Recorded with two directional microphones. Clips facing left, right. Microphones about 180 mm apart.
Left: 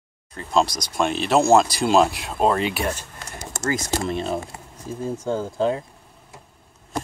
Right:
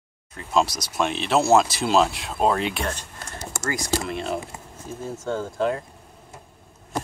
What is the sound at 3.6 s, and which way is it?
Speech, 20° left (ahead or behind).